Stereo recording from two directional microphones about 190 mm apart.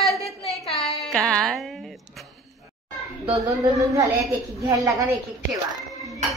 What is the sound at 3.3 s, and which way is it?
A woman's voice, 15° right (ahead or behind).